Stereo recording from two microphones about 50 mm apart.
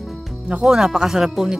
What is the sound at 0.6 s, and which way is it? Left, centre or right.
Speech, centre.